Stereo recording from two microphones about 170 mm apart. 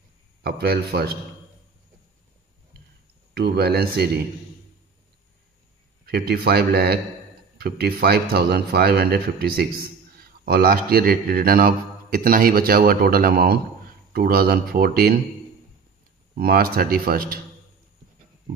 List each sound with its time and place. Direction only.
0.4 s speech: 70° right (ahead or behind)
3.3 s a man's voice: 70° right (ahead or behind)
6.0 s a man's voice: 65° right (ahead or behind)
16.3 s a man's voice: 60° right (ahead or behind)